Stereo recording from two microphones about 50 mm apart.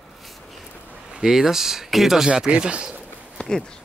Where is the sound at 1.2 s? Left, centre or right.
Centre.